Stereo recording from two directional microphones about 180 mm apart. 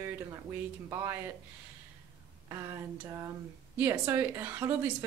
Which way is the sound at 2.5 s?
15° right (ahead or behind).